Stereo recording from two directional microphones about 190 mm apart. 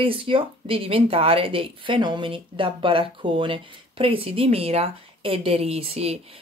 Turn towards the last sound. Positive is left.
turn(degrees=-35)  # may be behind; listen again after turning